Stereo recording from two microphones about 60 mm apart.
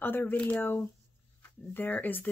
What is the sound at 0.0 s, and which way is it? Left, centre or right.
Speech, left.